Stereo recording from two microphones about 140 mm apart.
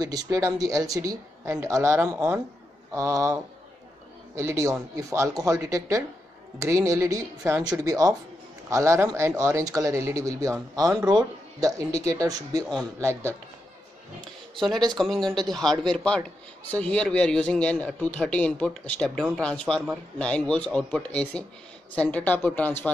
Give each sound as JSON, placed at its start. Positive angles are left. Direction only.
{"t": 0.0, "sound": "speech", "side_deg": -25}
{"t": 4.4, "sound": "speech", "side_deg": -20}
{"t": 14.9, "sound": "a man's voice", "side_deg": 5}